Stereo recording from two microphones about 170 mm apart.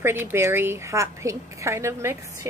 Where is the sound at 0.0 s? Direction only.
15° right (ahead or behind).